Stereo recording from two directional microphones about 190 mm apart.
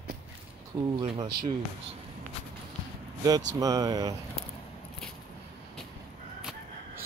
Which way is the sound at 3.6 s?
20° right (ahead or behind).